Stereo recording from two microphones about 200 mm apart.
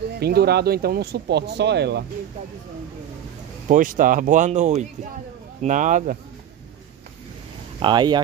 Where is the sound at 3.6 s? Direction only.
40° right (ahead or behind).